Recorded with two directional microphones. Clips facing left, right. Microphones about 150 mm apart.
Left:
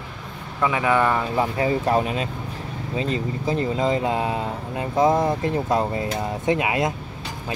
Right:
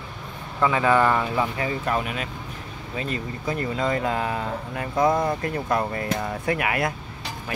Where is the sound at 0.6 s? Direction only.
15° left (ahead or behind).